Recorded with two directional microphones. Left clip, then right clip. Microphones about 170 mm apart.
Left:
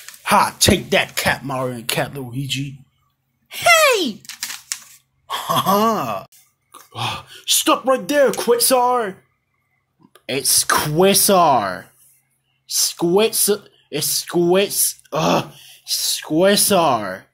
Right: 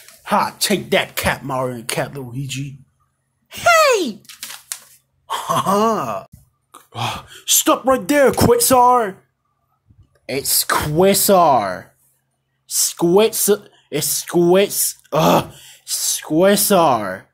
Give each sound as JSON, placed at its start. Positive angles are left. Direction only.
{"t": 0.2, "sound": "a sound", "side_deg": 15}
{"t": 0.5, "sound": "speech", "side_deg": 5}
{"t": 3.4, "sound": "a sound", "side_deg": 0}
{"t": 5.2, "sound": "sigh", "side_deg": 0}
{"t": 7.8, "sound": "speech", "side_deg": -15}
{"t": 10.6, "sound": "speech", "side_deg": -5}